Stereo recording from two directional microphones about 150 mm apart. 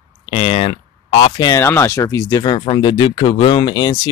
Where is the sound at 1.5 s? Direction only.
15° left (ahead or behind); by 4.1 s 30° left (ahead or behind).